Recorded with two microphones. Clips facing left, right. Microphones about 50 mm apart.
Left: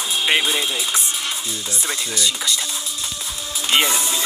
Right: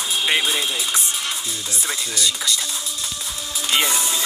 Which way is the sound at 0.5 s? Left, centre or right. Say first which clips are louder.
Left 1 dB; centre.